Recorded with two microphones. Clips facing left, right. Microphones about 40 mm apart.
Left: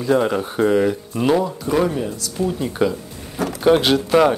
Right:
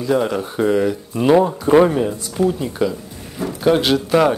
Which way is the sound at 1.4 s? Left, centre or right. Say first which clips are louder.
Right 6 dB; right.